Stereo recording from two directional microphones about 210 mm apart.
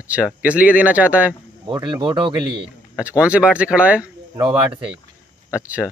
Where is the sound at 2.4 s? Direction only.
5° right (ahead or behind).